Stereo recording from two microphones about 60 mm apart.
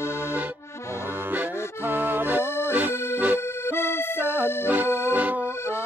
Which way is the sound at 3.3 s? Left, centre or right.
Left.